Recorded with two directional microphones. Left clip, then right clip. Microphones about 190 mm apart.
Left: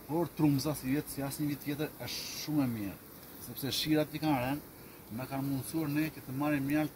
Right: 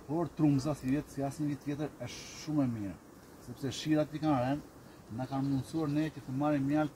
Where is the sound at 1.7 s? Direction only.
15° left (ahead or behind); by 4.5 s centre (ahead or behind).